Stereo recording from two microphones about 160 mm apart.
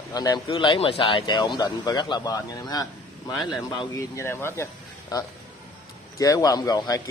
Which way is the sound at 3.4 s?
Centre (ahead or behind).